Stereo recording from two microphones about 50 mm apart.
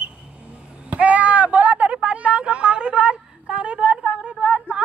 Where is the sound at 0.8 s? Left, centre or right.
Right.